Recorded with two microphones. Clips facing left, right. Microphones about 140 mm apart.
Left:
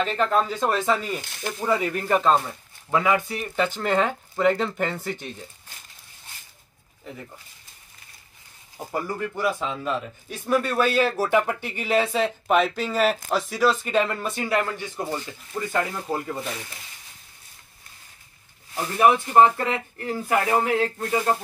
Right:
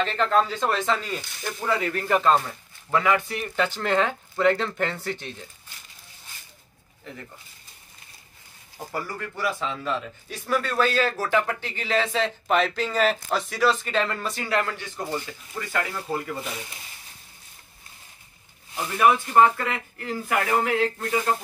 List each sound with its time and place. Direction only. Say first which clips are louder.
0.0 s a man's voice: even; 5° left (ahead or behind)
8.7 s a man's voice: left 3 dB; 20° left (ahead or behind)
18.9 s speech: left 2 dB; 30° left (ahead or behind)